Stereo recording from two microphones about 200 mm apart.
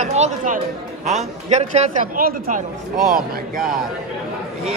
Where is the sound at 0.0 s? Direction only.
35° right (ahead or behind).